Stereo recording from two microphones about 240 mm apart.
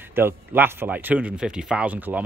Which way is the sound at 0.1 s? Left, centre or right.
Centre.